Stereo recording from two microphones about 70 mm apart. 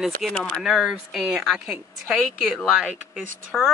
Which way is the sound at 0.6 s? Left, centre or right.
Centre.